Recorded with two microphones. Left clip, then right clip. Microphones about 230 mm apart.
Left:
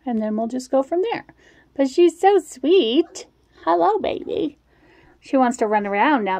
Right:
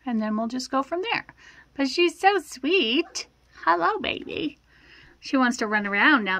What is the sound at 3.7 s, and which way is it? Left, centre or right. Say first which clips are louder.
Speech: left 4 dB; right.